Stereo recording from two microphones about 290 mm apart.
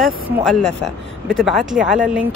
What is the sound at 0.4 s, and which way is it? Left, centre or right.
Speech, centre.